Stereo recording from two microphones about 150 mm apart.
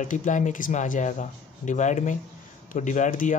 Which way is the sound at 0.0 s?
55° left (ahead or behind).